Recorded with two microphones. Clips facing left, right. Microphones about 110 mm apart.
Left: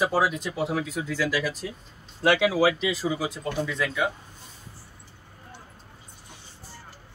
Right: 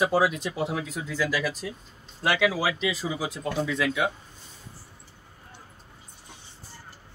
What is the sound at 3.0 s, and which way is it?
Speech, 5° right (ahead or behind).